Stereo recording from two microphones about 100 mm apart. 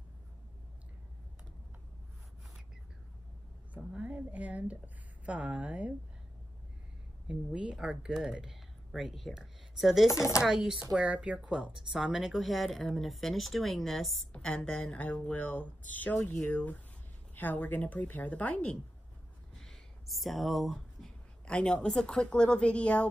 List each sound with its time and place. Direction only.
3.7 s speech: 15° right (ahead or behind)
7.2 s speech: 10° right (ahead or behind)
10.0 s speech: 30° left (ahead or behind)
10.4 s speech: 5° right (ahead or behind); by 18.8 s 15° left (ahead or behind)
19.6 s speech: centre (ahead or behind)